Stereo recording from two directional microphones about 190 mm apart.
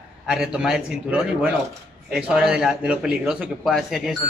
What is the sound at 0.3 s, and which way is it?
Speech, 5° right (ahead or behind).